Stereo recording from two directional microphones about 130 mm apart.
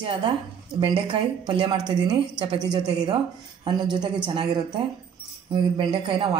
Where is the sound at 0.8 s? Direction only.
40° right (ahead or behind).